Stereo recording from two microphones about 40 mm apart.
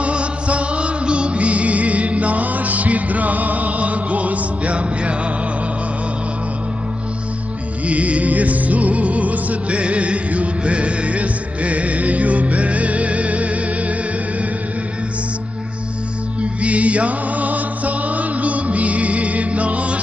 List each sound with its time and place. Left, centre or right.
0.0 s music: right
7.8 s music: right
16.6 s music: right